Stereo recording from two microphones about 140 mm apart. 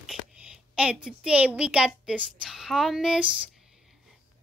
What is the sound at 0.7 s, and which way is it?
A woman's voice, 5° right (ahead or behind).